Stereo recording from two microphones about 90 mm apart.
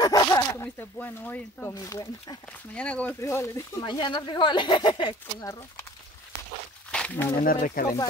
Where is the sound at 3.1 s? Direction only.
30° left (ahead or behind).